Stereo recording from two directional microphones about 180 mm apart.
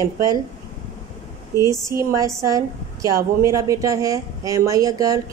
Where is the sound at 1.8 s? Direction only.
15° right (ahead or behind).